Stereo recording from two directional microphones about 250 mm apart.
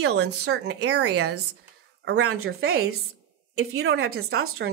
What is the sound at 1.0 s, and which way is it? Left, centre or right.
Speech, right.